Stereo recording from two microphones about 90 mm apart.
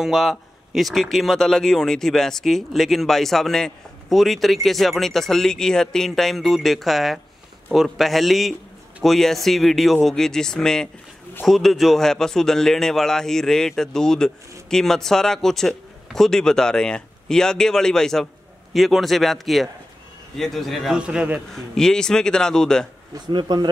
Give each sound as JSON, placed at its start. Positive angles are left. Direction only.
{"t": 0.0, "sound": "a man's voice", "side_deg": 0}
{"t": 21.5, "sound": "speech", "side_deg": 5}
{"t": 23.1, "sound": "speech", "side_deg": -50}